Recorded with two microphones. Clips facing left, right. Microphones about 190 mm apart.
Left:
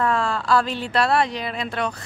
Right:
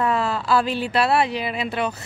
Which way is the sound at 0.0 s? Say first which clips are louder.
Even; 5° right (ahead or behind).